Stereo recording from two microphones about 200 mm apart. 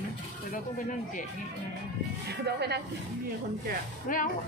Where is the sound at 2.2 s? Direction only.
55° right (ahead or behind).